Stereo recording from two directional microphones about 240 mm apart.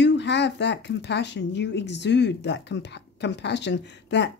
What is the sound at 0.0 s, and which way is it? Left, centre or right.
Speech, left.